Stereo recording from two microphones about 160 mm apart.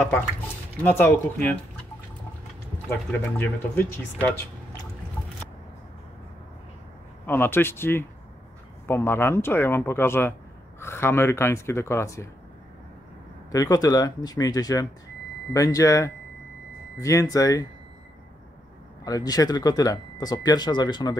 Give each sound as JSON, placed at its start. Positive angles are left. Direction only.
{"t": 0.8, "sound": "speech", "side_deg": 10}
{"t": 2.9, "sound": "speech", "side_deg": 10}
{"t": 7.2, "sound": "speech", "side_deg": 15}
{"t": 13.5, "sound": "speech", "side_deg": 20}
{"t": 19.0, "sound": "speech", "side_deg": 25}